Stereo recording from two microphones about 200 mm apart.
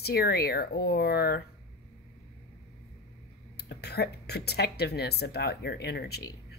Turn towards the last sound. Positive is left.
turn(degrees=55)  # may be behind; listen again after turning